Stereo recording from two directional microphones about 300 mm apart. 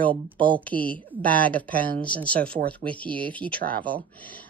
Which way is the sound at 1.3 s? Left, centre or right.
Centre.